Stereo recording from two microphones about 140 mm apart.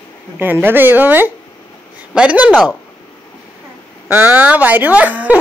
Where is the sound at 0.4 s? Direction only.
15° right (ahead or behind).